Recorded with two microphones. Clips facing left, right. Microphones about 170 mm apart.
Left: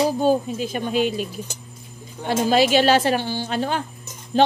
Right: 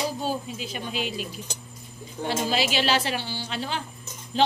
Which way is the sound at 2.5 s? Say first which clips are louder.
Left 10 dB; 50° left (ahead or behind).